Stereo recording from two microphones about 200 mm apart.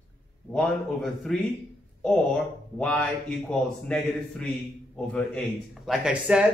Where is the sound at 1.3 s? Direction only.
Centre (ahead or behind).